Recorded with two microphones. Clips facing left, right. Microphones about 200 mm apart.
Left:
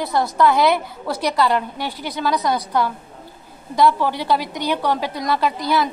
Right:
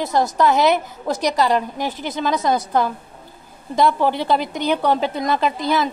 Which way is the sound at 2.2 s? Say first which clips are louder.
Right 1 dB; 25° right (ahead or behind).